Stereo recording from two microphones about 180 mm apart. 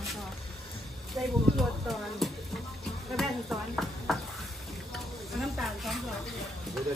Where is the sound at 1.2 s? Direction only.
15° right (ahead or behind).